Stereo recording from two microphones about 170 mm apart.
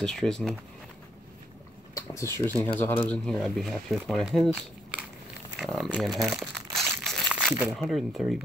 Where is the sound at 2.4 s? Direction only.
10° left (ahead or behind).